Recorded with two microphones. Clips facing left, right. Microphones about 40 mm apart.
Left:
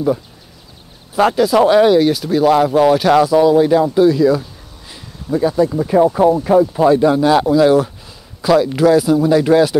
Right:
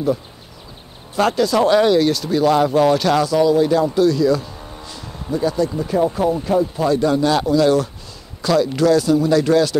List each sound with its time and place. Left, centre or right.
1.1 s speech: centre